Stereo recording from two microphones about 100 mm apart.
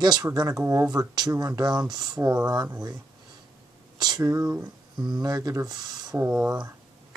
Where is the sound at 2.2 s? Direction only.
25° right (ahead or behind).